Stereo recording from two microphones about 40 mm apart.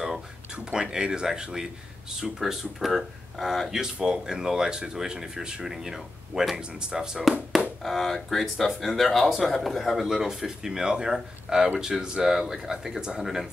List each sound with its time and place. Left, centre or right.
0.7 s speech: centre
2.4 s speech: centre
3.7 s speech: centre
6.5 s speech: right
7.8 s speech: centre